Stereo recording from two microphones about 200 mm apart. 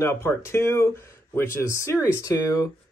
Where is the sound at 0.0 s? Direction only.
15° left (ahead or behind).